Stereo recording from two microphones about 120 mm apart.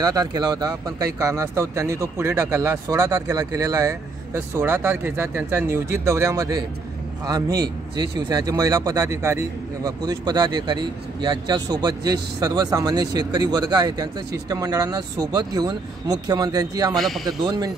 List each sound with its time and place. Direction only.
0.0 s a man's voice: 30° right (ahead or behind)
16.9 s a man's voice: centre (ahead or behind)
17.4 s a man's voice: 35° right (ahead or behind)